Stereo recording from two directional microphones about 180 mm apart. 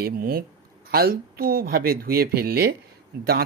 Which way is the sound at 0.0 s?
55° right (ahead or behind).